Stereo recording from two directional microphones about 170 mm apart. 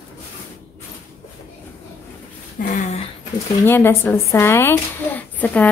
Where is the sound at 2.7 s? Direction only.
45° left (ahead or behind).